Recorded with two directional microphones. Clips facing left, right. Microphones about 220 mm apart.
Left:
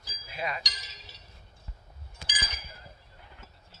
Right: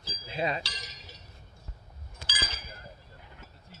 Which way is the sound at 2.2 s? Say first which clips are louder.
Right 3 dB; 15° left (ahead or behind).